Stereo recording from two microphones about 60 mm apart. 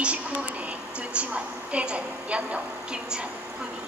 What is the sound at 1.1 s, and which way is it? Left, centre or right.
A woman's voice, right.